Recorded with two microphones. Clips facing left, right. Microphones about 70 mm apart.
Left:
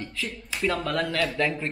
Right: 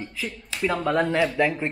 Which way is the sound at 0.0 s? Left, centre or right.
Centre.